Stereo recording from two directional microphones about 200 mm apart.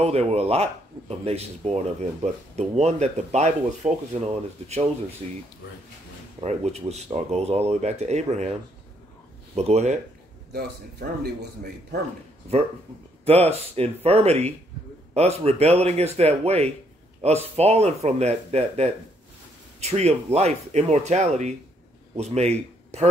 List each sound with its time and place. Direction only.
0.0 s speech: 30° right (ahead or behind)
6.4 s speech: 35° right (ahead or behind)
9.6 s speech: 30° right (ahead or behind)
10.5 s a man's voice: 55° right (ahead or behind)
13.2 s a man's voice: 30° right (ahead or behind)